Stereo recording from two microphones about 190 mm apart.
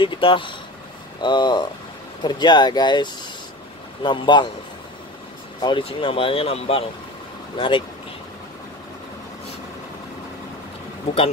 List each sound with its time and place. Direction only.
0.0 s speech: 25° left (ahead or behind)
5.6 s speech: 25° left (ahead or behind)